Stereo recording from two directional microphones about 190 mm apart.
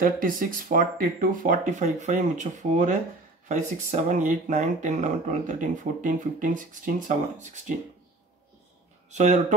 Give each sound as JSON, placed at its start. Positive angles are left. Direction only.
{"t": 0.0, "sound": "speech", "side_deg": -50}
{"t": 9.1, "sound": "speech", "side_deg": -35}